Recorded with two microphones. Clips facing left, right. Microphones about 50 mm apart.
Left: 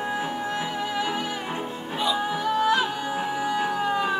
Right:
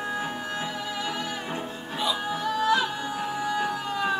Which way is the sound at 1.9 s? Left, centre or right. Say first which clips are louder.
Left 3 dB; centre.